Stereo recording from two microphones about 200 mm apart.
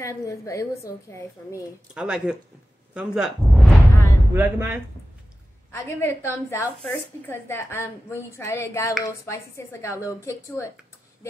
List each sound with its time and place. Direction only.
0.0 s a woman's voice: 15° left (ahead or behind)
2.0 s speech: 5° right (ahead or behind)
5.7 s a woman's voice: 15° left (ahead or behind)